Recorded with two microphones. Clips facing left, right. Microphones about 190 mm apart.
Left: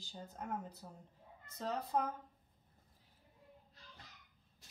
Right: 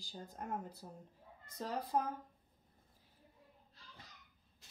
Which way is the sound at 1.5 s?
10° right (ahead or behind).